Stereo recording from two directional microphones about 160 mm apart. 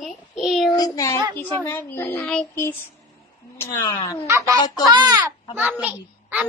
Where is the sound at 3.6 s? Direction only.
25° left (ahead or behind).